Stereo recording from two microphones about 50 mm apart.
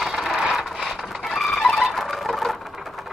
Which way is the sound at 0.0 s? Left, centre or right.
Centre.